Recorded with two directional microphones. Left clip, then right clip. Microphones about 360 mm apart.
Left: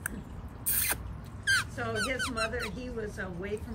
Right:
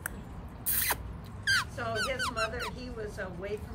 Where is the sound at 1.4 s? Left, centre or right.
Centre.